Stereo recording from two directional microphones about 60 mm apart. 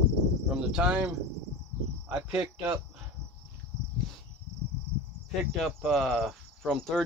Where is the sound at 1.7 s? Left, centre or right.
Left.